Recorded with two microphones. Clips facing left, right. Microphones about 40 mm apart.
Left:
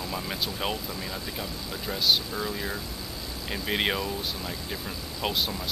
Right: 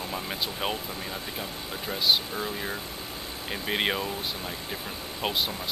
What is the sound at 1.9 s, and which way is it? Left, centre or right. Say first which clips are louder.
Speech: even; centre.